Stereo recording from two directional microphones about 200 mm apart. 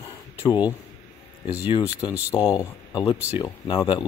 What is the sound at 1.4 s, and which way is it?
Speech, 5° right (ahead or behind).